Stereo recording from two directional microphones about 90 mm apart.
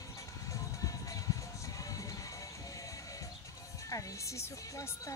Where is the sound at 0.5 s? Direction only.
40° left (ahead or behind).